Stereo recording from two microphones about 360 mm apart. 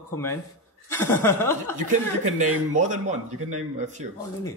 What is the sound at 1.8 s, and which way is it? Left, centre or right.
Speech, right.